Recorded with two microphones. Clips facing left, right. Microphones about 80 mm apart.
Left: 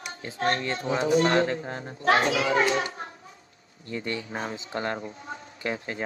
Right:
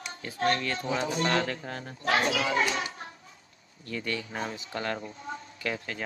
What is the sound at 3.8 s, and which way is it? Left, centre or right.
Speech, left.